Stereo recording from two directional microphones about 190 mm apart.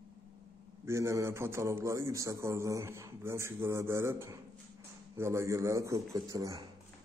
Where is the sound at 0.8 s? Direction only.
15° right (ahead or behind).